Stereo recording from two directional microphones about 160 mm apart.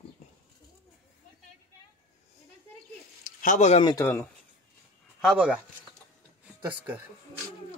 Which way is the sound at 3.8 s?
20° left (ahead or behind).